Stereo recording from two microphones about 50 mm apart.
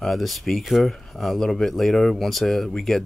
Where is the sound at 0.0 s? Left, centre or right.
Centre.